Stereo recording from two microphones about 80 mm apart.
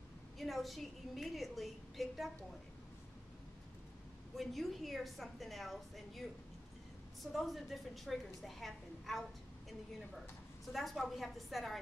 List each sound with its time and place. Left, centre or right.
0.4 s a woman's voice: centre
4.4 s a woman's voice: centre
7.3 s a woman's voice: centre